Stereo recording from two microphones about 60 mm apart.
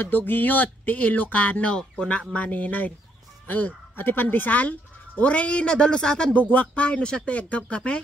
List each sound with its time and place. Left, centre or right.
0.0 s speech: left; by 6.4 s centre
6.5 s speech: left